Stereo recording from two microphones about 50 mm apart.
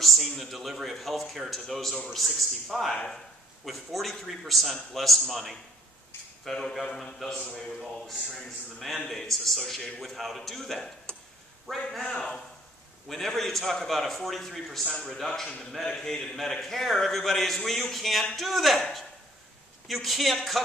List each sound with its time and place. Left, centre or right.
0.0 s a man's voice: centre
9.0 s a man's voice: centre
11.1 s a sound: left
11.7 s a man's voice: centre
12.0 s a man's voice: centre
13.1 s a man's voice: centre
19.9 s a man's voice: centre